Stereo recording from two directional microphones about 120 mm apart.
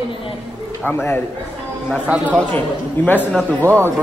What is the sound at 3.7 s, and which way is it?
Speech, 20° right (ahead or behind).